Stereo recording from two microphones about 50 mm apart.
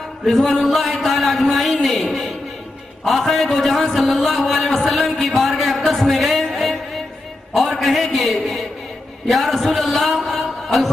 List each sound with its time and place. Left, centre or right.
0.3 s a sound: centre
3.0 s a man's voice: centre
6.5 s music: centre
7.5 s a man's voice: centre